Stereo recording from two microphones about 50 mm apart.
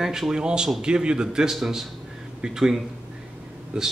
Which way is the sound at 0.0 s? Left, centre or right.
Centre.